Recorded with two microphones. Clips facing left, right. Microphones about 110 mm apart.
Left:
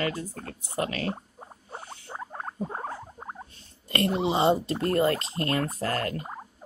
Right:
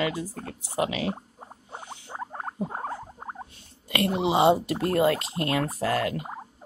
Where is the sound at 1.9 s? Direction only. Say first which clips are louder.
Right 4 dB; 25° right (ahead or behind).